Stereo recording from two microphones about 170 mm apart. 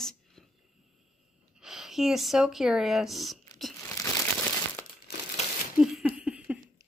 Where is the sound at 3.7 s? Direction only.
20° left (ahead or behind).